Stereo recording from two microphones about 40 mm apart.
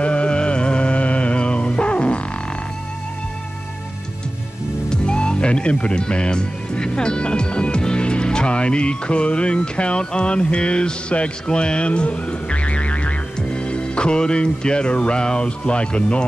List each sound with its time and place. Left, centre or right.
0.0 s music: left
4.8 s speech: left